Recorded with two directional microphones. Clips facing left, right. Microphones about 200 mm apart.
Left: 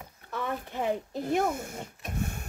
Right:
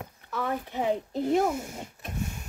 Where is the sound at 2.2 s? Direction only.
55° left (ahead or behind).